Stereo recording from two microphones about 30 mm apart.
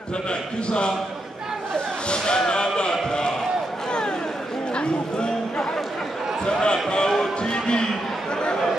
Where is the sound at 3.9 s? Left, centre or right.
Left.